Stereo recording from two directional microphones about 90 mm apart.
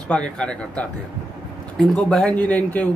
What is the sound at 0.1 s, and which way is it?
A man's voice, 10° left (ahead or behind).